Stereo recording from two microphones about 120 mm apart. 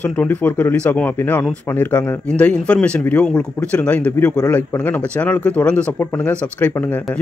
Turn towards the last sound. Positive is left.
turn(degrees=15)  # may be behind; listen again after turning